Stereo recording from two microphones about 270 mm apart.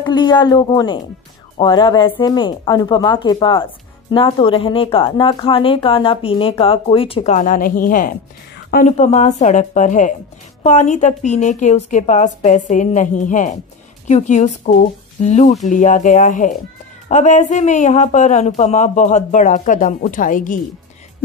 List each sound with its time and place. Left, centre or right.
0.0 s speech: centre